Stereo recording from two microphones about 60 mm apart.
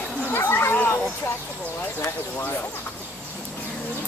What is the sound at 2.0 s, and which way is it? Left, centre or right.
Speech, left.